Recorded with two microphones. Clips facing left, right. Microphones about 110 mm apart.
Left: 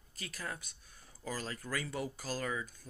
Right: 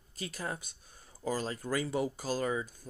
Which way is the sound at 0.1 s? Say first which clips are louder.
Right 5 dB; 25° right (ahead or behind).